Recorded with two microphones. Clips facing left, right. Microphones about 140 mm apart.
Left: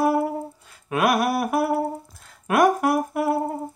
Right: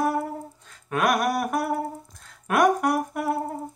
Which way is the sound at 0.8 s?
5° left (ahead or behind).